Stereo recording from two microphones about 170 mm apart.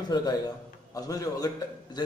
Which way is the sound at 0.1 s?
25° left (ahead or behind).